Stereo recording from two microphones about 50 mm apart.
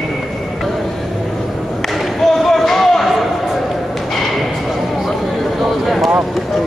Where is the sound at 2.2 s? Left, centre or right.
Centre.